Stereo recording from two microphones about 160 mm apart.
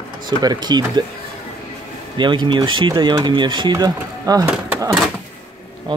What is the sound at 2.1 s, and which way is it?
Speech, 30° right (ahead or behind).